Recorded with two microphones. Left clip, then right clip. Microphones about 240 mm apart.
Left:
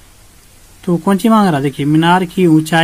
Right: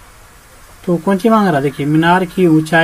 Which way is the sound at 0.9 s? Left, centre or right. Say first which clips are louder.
Right 1 dB; left.